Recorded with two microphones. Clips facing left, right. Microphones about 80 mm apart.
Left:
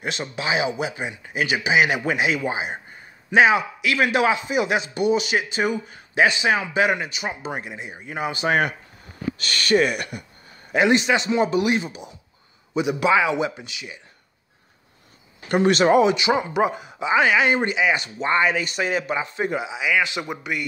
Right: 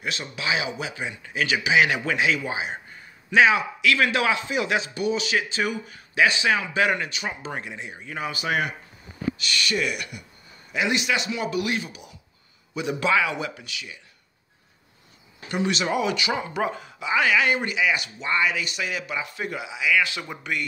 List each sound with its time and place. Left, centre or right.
0.0 s a man's voice: left; by 8.0 s centre
8.0 s speech: left
12.8 s speech: centre
15.4 s speech: left
16.0 s speech: left